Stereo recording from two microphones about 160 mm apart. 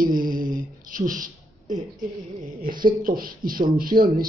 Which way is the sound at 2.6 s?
60° right (ahead or behind).